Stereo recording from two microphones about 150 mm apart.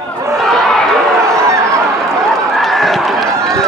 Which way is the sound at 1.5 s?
20° right (ahead or behind).